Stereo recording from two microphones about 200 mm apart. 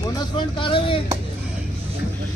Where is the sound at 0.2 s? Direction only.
25° left (ahead or behind).